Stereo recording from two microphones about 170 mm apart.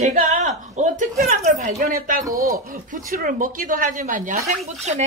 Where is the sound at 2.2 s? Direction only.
20° right (ahead or behind).